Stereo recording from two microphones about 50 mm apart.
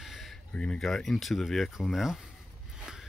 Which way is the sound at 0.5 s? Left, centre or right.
Left.